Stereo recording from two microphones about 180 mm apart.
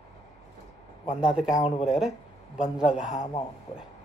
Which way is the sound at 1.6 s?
35° left (ahead or behind).